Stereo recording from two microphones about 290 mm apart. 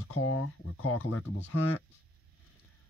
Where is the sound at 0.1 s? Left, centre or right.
Left.